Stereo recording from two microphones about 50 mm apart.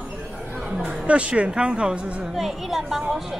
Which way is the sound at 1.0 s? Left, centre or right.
Right.